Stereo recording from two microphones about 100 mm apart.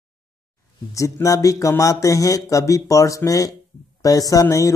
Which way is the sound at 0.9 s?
30° left (ahead or behind).